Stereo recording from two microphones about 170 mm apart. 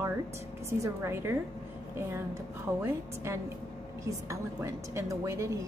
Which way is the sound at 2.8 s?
15° right (ahead or behind).